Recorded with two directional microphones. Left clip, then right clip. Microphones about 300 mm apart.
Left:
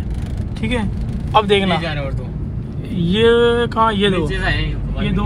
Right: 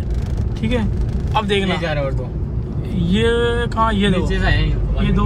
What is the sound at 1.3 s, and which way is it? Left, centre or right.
Speech, centre.